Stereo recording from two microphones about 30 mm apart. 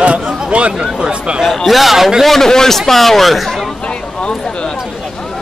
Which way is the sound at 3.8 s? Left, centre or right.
Left.